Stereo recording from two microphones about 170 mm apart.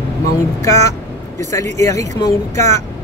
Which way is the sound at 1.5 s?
15° left (ahead or behind).